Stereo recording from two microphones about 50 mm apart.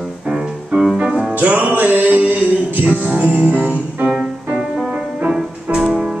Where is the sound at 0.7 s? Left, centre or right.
Centre.